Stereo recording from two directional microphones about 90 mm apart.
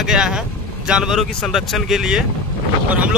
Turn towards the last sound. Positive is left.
turn(degrees=-15)  # may be behind; listen again after turning